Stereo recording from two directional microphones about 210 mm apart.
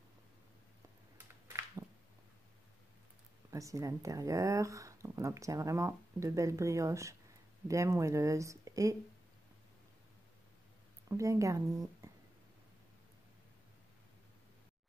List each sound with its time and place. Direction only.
3.5 s speech: 15° right (ahead or behind)
11.1 s speech: 15° right (ahead or behind)